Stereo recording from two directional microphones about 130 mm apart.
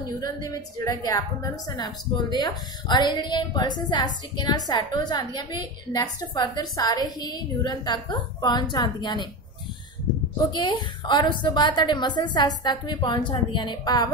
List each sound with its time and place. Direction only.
0.2 s a woman's voice: 30° left (ahead or behind)
10.5 s a woman's voice: 35° left (ahead or behind)